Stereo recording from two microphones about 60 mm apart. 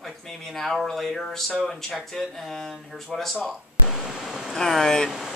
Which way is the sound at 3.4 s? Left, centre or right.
Centre.